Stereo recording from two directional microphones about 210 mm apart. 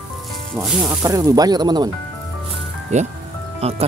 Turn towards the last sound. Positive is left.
turn(degrees=-30)  # may be behind; listen again after turning